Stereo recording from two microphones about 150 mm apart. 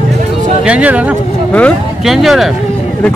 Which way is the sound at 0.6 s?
10° right (ahead or behind).